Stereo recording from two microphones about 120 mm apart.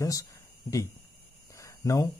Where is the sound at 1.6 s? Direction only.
25° left (ahead or behind).